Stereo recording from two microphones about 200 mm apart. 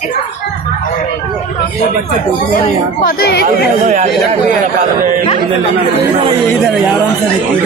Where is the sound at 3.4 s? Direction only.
35° right (ahead or behind).